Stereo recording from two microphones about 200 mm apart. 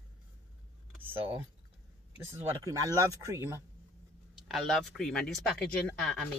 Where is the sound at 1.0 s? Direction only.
25° right (ahead or behind).